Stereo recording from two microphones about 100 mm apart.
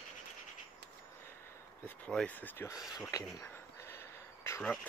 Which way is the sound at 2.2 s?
20° left (ahead or behind).